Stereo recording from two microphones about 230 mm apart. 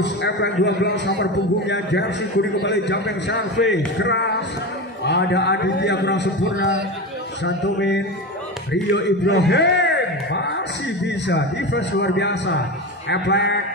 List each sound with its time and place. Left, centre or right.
0.0 s a man's voice: left